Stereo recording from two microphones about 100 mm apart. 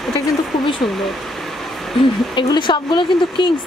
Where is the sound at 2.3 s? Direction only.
55° left (ahead or behind).